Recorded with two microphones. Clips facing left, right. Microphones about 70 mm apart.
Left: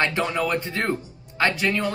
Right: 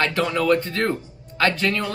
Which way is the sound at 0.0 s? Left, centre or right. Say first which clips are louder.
Right 2 dB; left.